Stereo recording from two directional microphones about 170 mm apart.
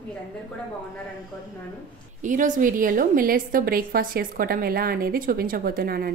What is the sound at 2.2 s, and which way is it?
A woman's voice, 50° right (ahead or behind).